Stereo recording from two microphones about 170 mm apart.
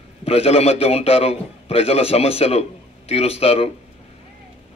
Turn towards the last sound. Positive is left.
turn(degrees=35)  # may be behind; listen again after turning